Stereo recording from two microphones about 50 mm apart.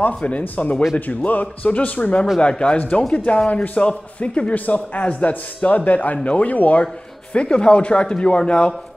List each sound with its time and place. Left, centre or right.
0.1 s a man's voice: left
7.3 s a man's voice: centre